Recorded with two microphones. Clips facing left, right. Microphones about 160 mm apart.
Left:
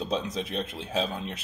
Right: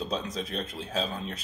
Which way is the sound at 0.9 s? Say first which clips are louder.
Left 2 dB; 15° left (ahead or behind).